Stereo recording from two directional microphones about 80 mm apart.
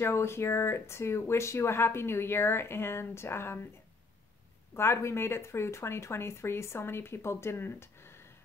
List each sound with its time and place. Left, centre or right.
0.0 s speech: left
4.7 s speech: left